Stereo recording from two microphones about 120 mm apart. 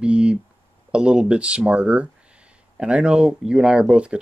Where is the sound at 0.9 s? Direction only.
10° right (ahead or behind).